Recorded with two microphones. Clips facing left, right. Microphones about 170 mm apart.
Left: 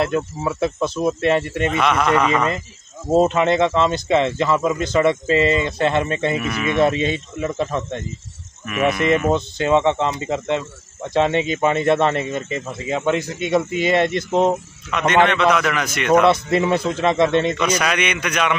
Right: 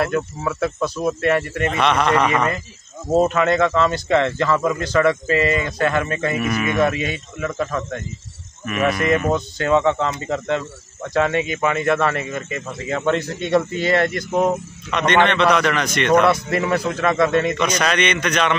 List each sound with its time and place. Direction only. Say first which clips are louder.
0.0 s speech: left 1 dB; 20° left (ahead or behind)
1.8 s a man's voice: right 1 dB; 5° left (ahead or behind)
3.1 s speech: left 1 dB; 20° left (ahead or behind)
8.6 s a man's voice: left 1 dB; 5° left (ahead or behind)
9.3 s speech: left 1 dB; 20° left (ahead or behind)
12.8 s speech: even; 15° left (ahead or behind)
14.9 s a man's voice: left 1 dB; 5° left (ahead or behind)
16.3 s speech: left 2 dB; 25° left (ahead or behind)
17.6 s speech: even; 10° left (ahead or behind)